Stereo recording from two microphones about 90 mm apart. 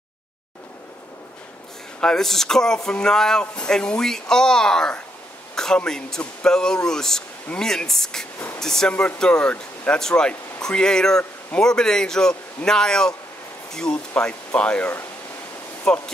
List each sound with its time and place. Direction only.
2.0 s speech: 5° left (ahead or behind)